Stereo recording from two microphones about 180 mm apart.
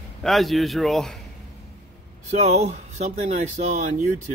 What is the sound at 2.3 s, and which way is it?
Speech, 40° right (ahead or behind).